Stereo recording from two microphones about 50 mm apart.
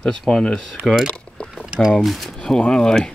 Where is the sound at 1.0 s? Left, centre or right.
Centre.